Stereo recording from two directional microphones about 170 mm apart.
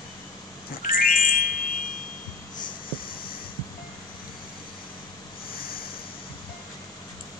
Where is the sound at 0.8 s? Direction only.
55° left (ahead or behind).